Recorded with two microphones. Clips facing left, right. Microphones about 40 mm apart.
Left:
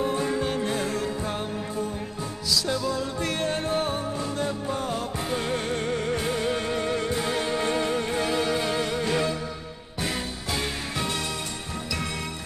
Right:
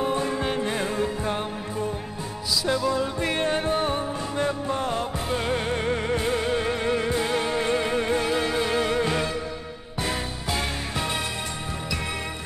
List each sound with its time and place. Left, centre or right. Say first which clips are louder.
0.0 s music: right 1 dB; right
2.5 s music: right 3 dB; centre